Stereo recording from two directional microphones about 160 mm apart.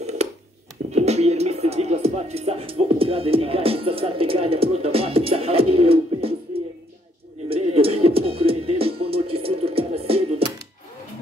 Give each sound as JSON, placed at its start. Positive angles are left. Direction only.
{"t": 0.9, "sound": "music", "side_deg": -40}
{"t": 7.4, "sound": "music", "side_deg": -35}